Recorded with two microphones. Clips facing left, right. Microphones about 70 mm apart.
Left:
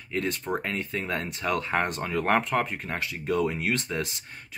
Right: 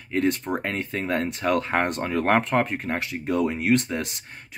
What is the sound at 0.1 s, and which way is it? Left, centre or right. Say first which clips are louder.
Speech: right 5 dB; right.